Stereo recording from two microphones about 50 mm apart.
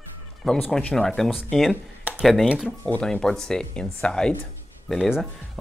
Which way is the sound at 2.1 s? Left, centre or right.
Right.